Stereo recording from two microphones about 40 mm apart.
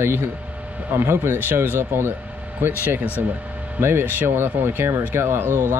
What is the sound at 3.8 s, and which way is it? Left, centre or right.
Speech, right.